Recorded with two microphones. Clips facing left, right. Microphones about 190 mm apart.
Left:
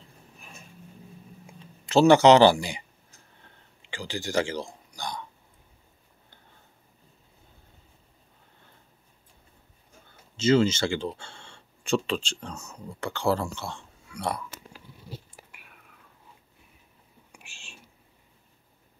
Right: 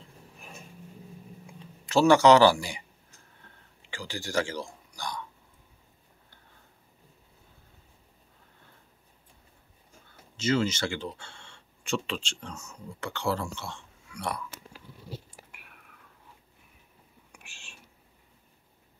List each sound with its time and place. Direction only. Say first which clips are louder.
1.9 s speech: left 2 dB; 25° left (ahead or behind)
3.9 s a man's voice: left 3 dB; 20° left (ahead or behind)
10.3 s speech: left 6 dB; 25° left (ahead or behind)